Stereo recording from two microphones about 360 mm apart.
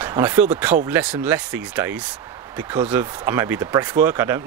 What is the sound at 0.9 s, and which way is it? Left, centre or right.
Speech, centre.